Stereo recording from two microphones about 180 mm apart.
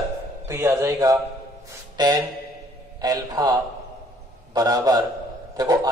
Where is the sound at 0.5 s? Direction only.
15° right (ahead or behind).